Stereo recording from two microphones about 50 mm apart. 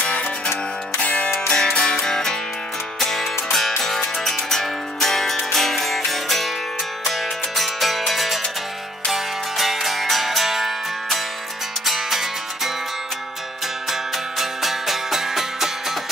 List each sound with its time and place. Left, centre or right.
1.0 s music: left
1.5 s music: centre
7.5 s music: centre
14.4 s music: centre